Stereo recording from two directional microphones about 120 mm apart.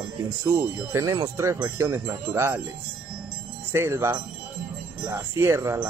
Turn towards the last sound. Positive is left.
turn(degrees=-20)  # may be behind; listen again after turning